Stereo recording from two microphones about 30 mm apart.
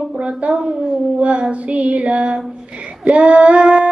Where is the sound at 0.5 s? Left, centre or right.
Right.